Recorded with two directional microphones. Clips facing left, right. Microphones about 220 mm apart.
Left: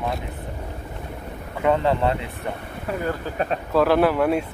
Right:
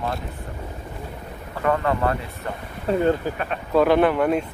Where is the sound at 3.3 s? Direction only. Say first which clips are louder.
Left 4 dB; 35° left (ahead or behind).